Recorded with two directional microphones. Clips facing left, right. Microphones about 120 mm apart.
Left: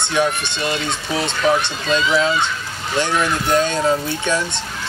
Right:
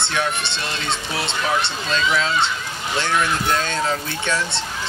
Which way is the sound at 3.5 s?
15° left (ahead or behind).